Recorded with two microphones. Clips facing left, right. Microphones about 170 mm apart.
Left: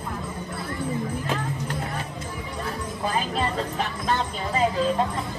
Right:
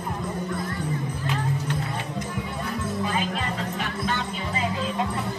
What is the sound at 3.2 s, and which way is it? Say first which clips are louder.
Music: left 2 dB; 40° left (ahead or behind).